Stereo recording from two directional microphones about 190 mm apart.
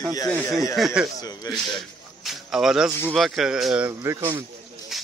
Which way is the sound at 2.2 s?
Centre (ahead or behind).